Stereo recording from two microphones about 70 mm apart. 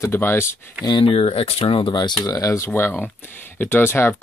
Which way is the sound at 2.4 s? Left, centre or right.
Left.